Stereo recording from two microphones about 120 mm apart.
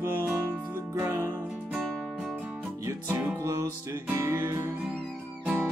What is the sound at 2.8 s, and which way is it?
Music, 25° right (ahead or behind).